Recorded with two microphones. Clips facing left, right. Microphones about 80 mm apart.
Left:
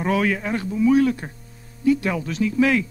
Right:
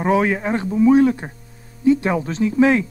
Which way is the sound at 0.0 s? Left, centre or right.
Right.